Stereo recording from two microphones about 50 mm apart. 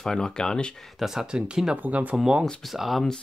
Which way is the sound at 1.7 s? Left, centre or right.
Right.